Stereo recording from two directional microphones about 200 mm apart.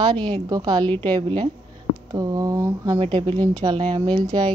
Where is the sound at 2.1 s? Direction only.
15° right (ahead or behind).